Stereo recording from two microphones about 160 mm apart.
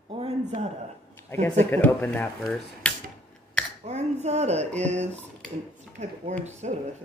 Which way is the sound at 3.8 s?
45° right (ahead or behind).